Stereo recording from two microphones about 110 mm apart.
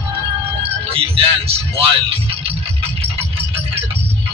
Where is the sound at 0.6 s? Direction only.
60° right (ahead or behind).